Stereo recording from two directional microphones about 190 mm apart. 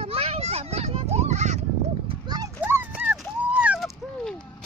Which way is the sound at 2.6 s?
10° right (ahead or behind).